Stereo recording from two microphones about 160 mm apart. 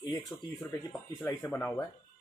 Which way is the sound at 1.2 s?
20° left (ahead or behind).